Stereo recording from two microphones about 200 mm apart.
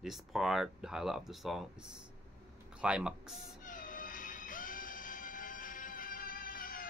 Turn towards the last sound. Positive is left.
turn(degrees=45)  # may be behind; listen again after turning